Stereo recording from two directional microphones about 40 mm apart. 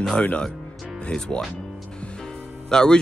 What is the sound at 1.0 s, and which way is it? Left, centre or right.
Speech, left.